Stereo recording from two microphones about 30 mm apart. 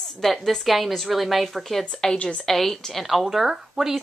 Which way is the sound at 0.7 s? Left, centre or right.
Centre.